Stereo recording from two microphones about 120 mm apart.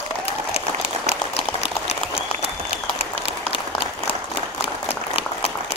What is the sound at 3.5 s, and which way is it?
Applause, 50° left (ahead or behind).